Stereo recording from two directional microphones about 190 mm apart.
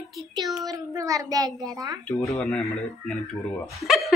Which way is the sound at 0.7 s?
20° right (ahead or behind).